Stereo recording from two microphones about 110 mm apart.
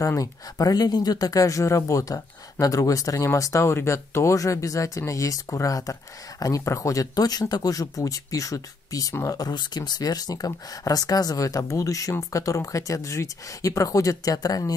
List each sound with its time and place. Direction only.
0.0 s speech: 30° left (ahead or behind)